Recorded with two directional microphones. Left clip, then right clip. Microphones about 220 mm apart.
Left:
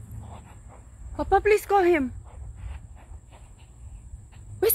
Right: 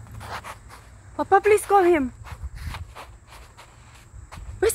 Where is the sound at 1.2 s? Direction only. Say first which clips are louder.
Right 3 dB; 10° right (ahead or behind).